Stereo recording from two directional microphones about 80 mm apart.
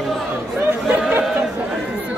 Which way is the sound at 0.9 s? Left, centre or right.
Right.